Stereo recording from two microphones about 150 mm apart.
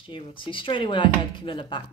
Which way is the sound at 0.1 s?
35° left (ahead or behind).